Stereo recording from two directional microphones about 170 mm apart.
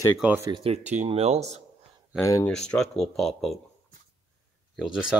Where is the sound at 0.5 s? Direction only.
40° right (ahead or behind).